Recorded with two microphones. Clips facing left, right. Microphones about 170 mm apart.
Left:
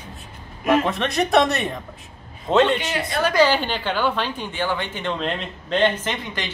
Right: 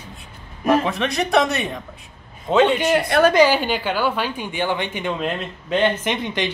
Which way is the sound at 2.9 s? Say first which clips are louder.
Right 7 dB; 60° right (ahead or behind).